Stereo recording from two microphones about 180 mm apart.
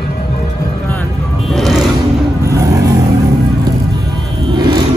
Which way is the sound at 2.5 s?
20° right (ahead or behind).